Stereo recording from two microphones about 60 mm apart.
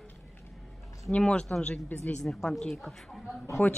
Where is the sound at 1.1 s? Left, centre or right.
Centre.